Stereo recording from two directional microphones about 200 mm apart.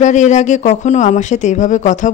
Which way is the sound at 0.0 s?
35° left (ahead or behind).